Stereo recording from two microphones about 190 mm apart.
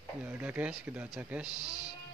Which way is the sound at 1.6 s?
20° left (ahead or behind).